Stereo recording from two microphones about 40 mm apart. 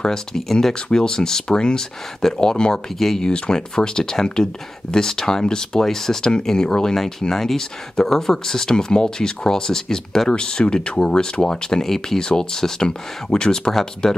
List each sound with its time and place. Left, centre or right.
0.0 s speech: centre